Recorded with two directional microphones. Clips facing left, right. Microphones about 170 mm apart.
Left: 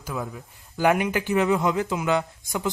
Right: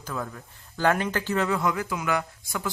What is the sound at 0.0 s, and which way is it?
Speech, 10° left (ahead or behind).